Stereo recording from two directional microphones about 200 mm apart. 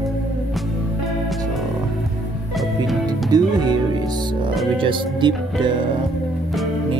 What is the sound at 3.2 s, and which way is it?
Music, 20° right (ahead or behind).